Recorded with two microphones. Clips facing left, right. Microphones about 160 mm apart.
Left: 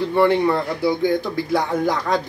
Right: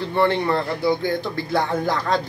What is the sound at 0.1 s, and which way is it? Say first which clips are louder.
Speech: left 2 dB; 10° left (ahead or behind).